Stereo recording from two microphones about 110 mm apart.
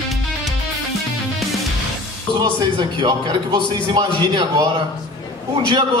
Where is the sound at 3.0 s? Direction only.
45° right (ahead or behind).